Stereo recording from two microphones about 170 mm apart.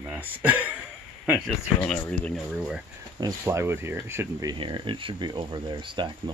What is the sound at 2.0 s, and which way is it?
Speech, 5° left (ahead or behind).